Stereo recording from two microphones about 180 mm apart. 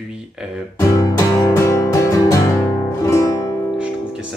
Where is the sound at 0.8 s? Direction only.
15° left (ahead or behind).